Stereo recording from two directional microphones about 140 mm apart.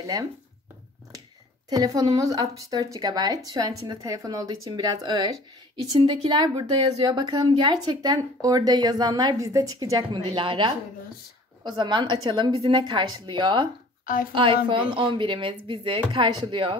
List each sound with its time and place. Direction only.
0.0 s speech: 25° right (ahead or behind)
1.7 s a woman's voice: 25° right (ahead or behind)
14.0 s a woman's voice: 80° left
14.3 s speech: 35° right (ahead or behind)